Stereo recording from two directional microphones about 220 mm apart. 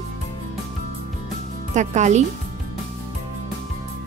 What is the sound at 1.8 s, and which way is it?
Speech, 30° right (ahead or behind).